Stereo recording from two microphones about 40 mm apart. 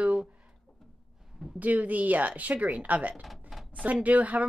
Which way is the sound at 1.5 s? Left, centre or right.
Right.